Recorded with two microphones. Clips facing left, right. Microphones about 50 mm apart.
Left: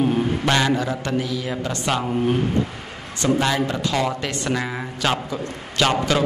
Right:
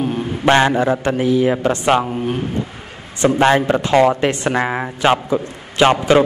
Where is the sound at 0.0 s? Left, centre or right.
Centre.